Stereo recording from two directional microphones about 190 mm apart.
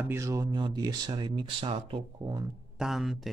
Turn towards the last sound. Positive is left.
turn(degrees=0)  # may be behind; listen again after turning